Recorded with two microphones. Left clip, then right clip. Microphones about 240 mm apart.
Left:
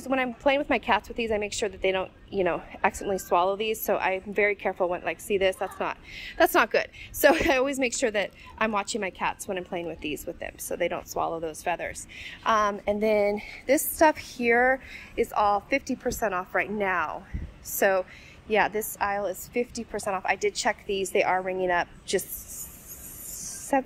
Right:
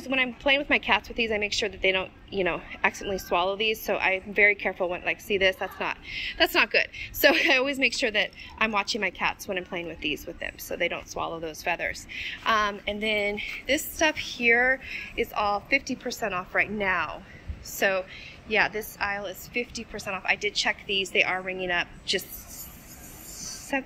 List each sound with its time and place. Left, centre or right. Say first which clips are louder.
0.0 s a woman's voice: even; centre
23.4 s music: left 4 dB; centre